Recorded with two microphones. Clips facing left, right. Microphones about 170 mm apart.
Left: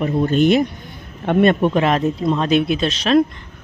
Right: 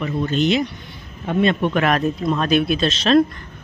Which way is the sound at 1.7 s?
25° left (ahead or behind).